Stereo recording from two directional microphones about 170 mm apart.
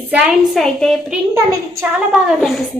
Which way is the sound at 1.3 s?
15° right (ahead or behind).